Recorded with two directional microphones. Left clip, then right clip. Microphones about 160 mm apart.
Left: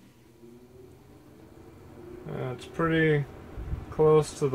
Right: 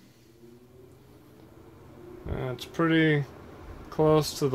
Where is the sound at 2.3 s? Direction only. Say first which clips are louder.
Right 2 dB; 55° right (ahead or behind).